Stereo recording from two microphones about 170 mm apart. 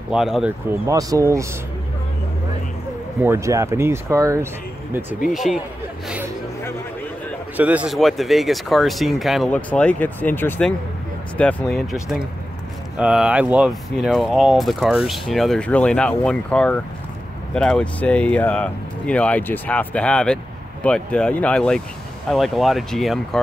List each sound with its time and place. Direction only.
0.1 s speech: 5° right (ahead or behind)
0.7 s speech: 20° right (ahead or behind)
3.2 s speech: 15° right (ahead or behind)
4.9 s speech: centre (ahead or behind)
7.5 s speech: 10° right (ahead or behind)